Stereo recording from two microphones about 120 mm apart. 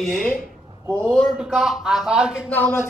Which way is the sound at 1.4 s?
5° right (ahead or behind).